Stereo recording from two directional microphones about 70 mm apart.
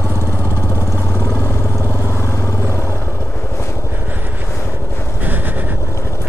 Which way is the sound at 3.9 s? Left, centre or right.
Right.